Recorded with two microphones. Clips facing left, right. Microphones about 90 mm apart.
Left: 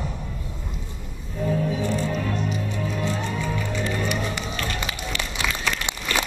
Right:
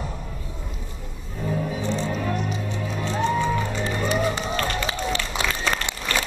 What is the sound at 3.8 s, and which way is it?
Run, 35° right (ahead or behind).